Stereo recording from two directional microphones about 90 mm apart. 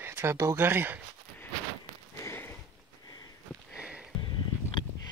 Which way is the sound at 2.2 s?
30° left (ahead or behind).